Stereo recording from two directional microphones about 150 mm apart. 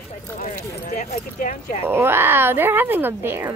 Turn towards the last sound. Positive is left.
turn(degrees=-15)  # may be behind; listen again after turning